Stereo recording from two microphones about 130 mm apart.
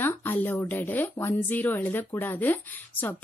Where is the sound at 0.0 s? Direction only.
15° left (ahead or behind).